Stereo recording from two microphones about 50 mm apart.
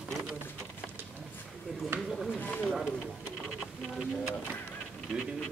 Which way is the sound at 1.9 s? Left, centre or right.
Centre.